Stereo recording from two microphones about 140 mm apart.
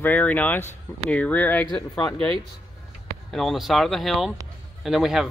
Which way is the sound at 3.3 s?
Centre (ahead or behind).